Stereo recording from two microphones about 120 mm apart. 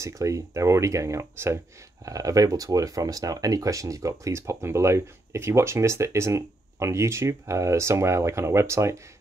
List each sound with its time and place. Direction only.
0.0 s speech: 25° right (ahead or behind)